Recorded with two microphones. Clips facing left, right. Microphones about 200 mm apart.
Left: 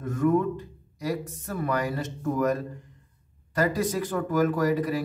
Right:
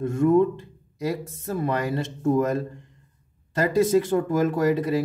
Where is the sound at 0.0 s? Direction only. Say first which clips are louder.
Right 5 dB; 25° right (ahead or behind).